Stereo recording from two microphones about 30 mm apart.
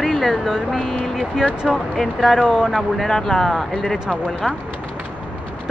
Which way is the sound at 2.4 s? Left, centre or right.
Right.